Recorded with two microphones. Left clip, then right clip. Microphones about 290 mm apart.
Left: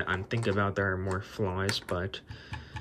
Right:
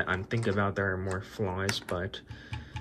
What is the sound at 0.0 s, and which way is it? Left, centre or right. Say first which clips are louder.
Speech: right 1 dB; centre.